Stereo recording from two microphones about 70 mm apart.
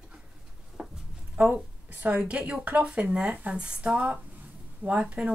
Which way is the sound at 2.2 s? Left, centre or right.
Centre.